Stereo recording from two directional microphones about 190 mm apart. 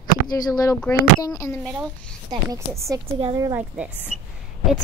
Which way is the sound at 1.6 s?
Centre (ahead or behind).